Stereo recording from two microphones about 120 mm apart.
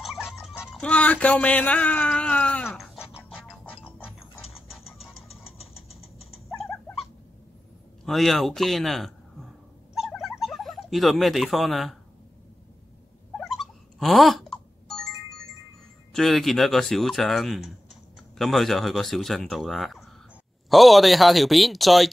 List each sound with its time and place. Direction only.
0.0 s music: 5° right (ahead or behind)
0.7 s a sound: 10° left (ahead or behind)
5.3 s a sound: 55° left (ahead or behind)
8.0 s a man's voice: centre (ahead or behind)
9.9 s bird: centre (ahead or behind)
13.4 s music: centre (ahead or behind)
16.1 s speech: centre (ahead or behind)